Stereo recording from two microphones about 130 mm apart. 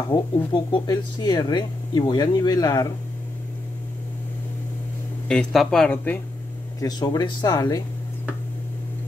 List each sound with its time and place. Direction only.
0.1 s speech: 35° left (ahead or behind)
5.3 s speech: 5° left (ahead or behind)
6.8 s speech: 30° left (ahead or behind)